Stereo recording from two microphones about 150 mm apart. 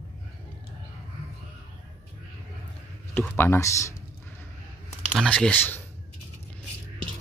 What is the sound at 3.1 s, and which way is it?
Speech, 15° left (ahead or behind).